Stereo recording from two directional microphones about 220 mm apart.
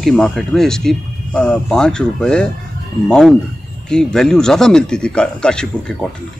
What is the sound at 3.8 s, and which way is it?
Speech, 5° left (ahead or behind).